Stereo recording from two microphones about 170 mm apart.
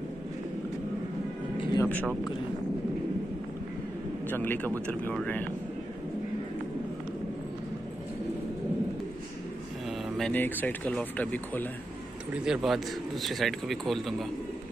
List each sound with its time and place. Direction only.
1.6 s music: 25° left (ahead or behind)
4.3 s speech: 10° left (ahead or behind)
9.8 s mantra: centre (ahead or behind)
10.3 s a man's voice: 10° left (ahead or behind)